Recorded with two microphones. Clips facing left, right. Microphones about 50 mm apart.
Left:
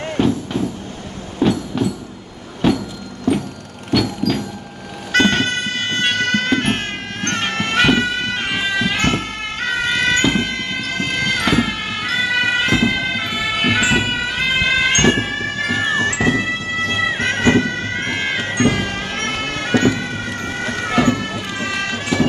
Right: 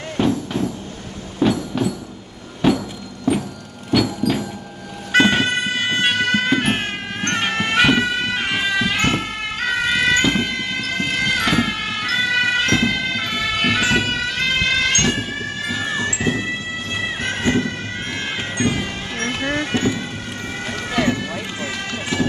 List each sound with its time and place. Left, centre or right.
0.2 s vehicle: centre
1.4 s music: centre
2.6 s vehicle: centre
3.9 s music: centre
15.1 s music: left
19.6 s a sound: left